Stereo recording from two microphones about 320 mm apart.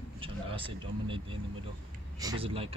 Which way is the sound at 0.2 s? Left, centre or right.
Centre.